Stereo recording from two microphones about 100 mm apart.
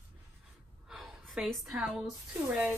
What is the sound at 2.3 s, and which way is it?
Speech, 15° right (ahead or behind).